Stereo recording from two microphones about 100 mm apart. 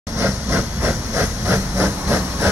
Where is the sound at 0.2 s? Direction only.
25° right (ahead or behind).